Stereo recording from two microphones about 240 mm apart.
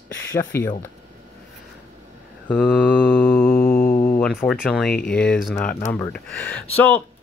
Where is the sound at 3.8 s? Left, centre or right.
Left.